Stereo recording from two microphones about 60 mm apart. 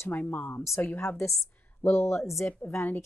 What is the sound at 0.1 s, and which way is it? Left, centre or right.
Speech, left.